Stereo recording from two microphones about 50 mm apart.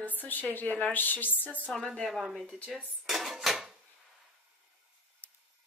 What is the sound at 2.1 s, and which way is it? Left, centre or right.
Speech, centre.